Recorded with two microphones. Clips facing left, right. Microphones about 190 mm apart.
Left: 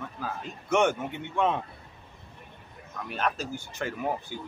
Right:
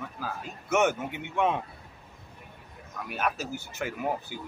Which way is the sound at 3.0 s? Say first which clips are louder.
Left 1 dB; 10° right (ahead or behind).